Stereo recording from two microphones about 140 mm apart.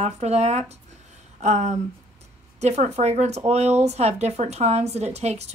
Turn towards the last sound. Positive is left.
turn(degrees=-50)  # may be behind; listen again after turning